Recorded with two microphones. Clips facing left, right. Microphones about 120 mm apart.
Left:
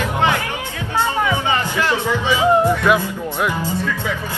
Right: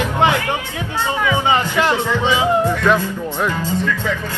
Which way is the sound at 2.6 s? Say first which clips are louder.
Even; 15° left (ahead or behind).